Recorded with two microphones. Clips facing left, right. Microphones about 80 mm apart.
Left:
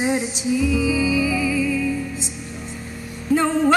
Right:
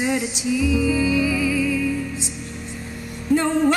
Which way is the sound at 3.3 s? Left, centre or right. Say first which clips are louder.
Even; centre.